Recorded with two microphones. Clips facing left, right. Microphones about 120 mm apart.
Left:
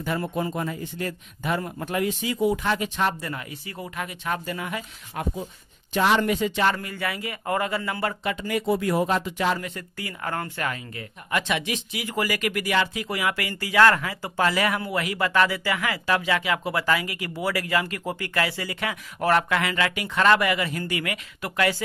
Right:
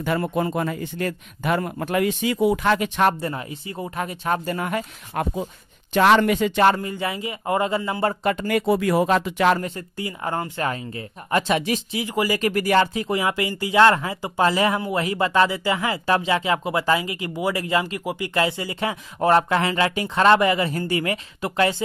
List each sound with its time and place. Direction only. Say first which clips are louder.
0.0 s speech: right 4 dB; 65° right (ahead or behind)
3.2 s speech: right 5 dB; 30° right (ahead or behind)
3.9 s speech: right 5 dB; 35° right (ahead or behind); by 5.5 s 65° right (ahead or behind)
5.9 s speech: right 5 dB; 80° right
6.7 s speech: right 5 dB; 25° right (ahead or behind)
8.2 s speech: right 5 dB; 50° right (ahead or behind); by 9.6 s 80° right
9.6 s speech: right 5 dB; 25° right (ahead or behind)
12.1 s speech: right 4 dB; 20° right (ahead or behind)
12.4 s speech: right 8 dB; 35° right (ahead or behind)